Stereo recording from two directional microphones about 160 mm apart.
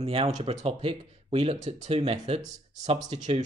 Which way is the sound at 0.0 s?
40° right (ahead or behind).